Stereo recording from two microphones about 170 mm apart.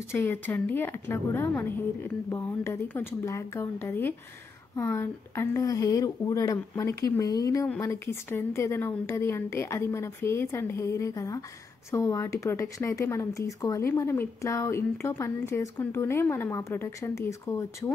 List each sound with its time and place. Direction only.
0.1 s a woman's voice: 15° left (ahead or behind)
7.6 s speech: 5° left (ahead or behind)